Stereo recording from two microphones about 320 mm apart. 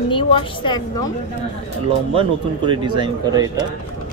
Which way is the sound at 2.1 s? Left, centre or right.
Centre.